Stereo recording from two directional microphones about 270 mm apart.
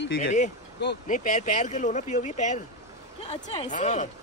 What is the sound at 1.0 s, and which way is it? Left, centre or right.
Speech, left.